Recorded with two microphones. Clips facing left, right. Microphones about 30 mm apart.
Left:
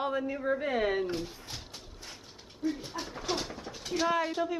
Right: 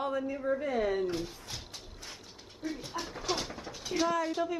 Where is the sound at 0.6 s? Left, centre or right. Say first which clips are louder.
Left 1 dB; left.